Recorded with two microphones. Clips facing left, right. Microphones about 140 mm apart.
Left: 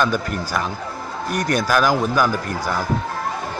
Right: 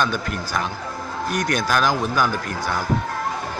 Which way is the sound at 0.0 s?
5° left (ahead or behind).